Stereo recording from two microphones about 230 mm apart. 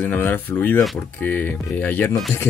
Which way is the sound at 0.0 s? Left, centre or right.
Centre.